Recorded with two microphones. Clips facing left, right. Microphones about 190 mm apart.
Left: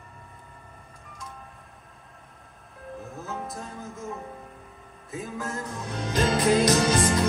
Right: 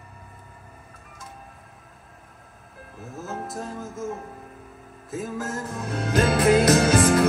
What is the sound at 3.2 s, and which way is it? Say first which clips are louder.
Music: right 5 dB; 5° right (ahead or behind).